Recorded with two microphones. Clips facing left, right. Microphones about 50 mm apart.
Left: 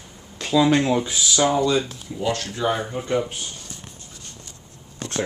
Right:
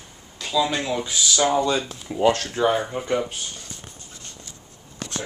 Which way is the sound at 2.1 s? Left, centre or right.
Right.